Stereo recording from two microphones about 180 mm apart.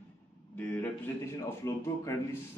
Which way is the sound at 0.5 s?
10° left (ahead or behind).